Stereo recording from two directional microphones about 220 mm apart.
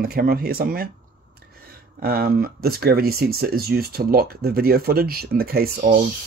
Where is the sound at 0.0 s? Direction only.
45° right (ahead or behind).